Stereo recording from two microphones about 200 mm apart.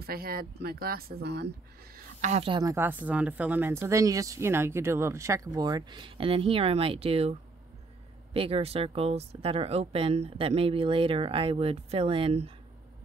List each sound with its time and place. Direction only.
0.0 s speech: 50° right (ahead or behind)
2.0 s a woman's voice: 35° right (ahead or behind)